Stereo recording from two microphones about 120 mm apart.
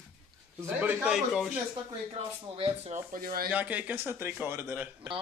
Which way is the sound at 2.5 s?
60° right (ahead or behind).